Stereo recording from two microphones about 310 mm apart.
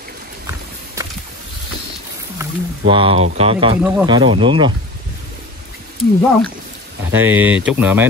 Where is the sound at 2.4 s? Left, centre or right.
Centre.